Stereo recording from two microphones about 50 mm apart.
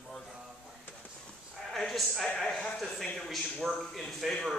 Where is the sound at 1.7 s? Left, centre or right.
Centre.